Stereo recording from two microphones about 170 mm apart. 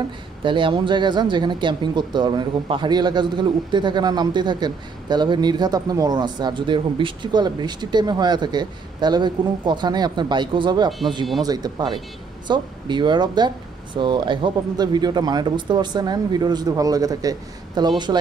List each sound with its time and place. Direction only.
0.4 s speech: 30° right (ahead or behind)
10.9 s speech: centre (ahead or behind)
11.4 s speech: 25° right (ahead or behind)